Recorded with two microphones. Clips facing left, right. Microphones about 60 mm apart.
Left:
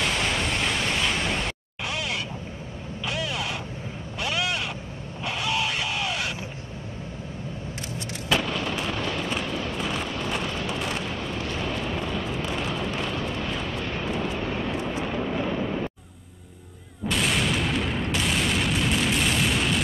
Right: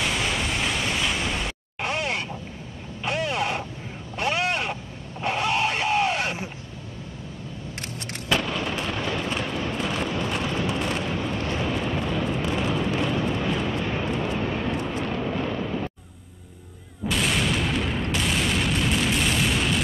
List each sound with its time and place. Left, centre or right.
0.0 s vehicle: centre
1.8 s a sound: right
4.2 s vehicle: right
5.2 s a sound: right
7.8 s a sound: right
8.3 s artillery fire: centre
11.6 s eruption: centre
15.0 s vehicle: centre
17.0 s boom: centre